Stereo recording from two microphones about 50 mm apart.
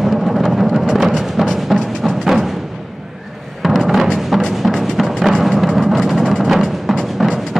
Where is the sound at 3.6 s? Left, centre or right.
Centre.